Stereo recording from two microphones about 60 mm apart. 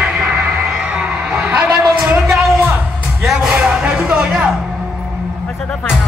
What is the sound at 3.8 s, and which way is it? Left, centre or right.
Music, centre.